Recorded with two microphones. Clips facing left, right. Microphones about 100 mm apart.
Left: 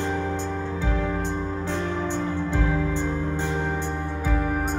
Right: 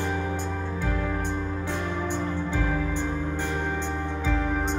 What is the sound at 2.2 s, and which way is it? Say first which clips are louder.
Music: left 2 dB; 15° left (ahead or behind).